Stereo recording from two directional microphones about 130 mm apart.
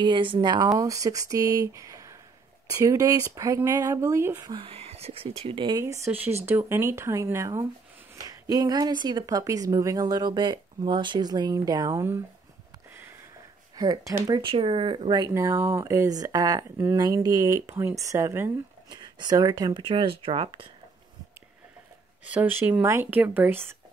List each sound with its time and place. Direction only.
0.0 s a woman's voice: 40° right (ahead or behind); by 4.4 s 20° right (ahead or behind)
4.4 s speech: 35° right (ahead or behind)
4.6 s speech: 50° right (ahead or behind)
5.8 s a woman's voice: 25° right (ahead or behind)
13.7 s a woman's voice: 30° right (ahead or behind)
14.5 s speech: 45° right (ahead or behind)
15.3 s a woman's voice: 20° right (ahead or behind)
18.9 s speech: 35° right (ahead or behind)
22.2 s speech: 10° right (ahead or behind)